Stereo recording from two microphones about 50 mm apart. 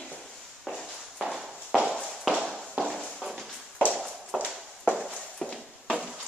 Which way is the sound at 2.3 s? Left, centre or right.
Centre.